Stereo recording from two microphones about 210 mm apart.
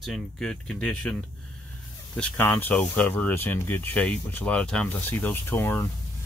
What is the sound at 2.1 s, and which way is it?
Speech, 5° left (ahead or behind).